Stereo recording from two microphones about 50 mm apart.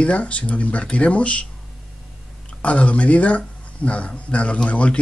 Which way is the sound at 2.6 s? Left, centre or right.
Left.